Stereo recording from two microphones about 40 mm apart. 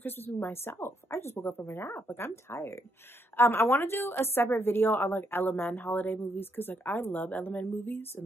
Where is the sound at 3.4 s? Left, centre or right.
Left.